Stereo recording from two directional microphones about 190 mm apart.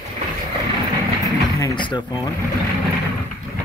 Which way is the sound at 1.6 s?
20° left (ahead or behind).